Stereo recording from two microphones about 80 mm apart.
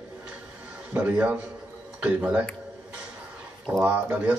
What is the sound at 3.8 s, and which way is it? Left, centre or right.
Speech, right.